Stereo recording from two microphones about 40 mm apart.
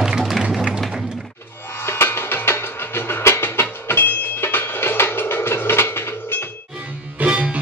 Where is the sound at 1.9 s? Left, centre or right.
Left.